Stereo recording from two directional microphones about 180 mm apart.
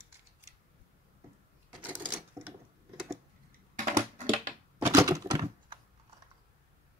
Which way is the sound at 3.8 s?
45° right (ahead or behind).